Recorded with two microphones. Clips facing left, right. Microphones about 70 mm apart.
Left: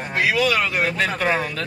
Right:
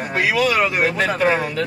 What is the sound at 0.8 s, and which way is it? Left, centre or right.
Speech, right.